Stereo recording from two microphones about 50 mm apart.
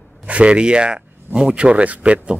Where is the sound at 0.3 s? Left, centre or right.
Right.